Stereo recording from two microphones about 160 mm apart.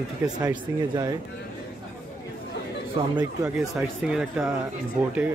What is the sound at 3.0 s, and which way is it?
Speech, 30° right (ahead or behind).